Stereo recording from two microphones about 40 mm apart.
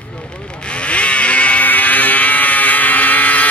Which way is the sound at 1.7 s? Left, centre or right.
Left.